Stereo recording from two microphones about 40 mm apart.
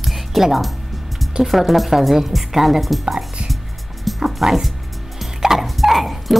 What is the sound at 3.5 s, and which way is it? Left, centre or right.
Music, centre.